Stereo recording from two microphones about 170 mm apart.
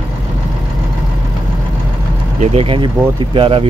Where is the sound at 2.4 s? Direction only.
35° right (ahead or behind).